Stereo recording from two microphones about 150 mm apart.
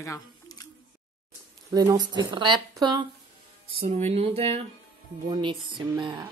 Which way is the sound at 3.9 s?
40° right (ahead or behind).